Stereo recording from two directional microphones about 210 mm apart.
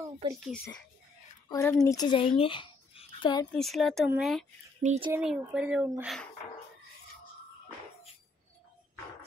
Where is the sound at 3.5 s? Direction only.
Centre (ahead or behind).